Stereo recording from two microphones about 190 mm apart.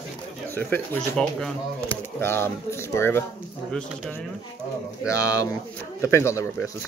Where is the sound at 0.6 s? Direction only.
5° left (ahead or behind).